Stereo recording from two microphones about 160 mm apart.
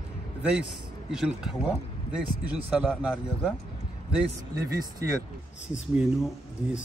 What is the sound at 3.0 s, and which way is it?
Speech, 5° right (ahead or behind).